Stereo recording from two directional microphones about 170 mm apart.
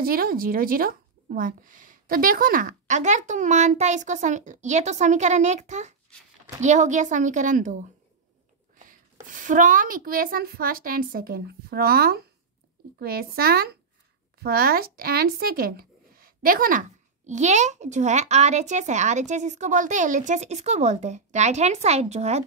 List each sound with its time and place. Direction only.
0.0 s a woman's voice: 60° right (ahead or behind)
17.3 s speech: 45° right (ahead or behind)